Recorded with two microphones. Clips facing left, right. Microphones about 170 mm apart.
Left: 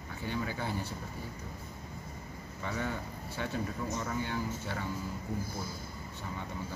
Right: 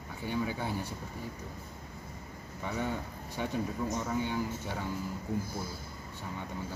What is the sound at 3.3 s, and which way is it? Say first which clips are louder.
Speech: right 3 dB; 15° right (ahead or behind).